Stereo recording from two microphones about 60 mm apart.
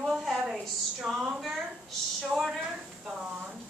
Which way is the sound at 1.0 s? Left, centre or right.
Centre.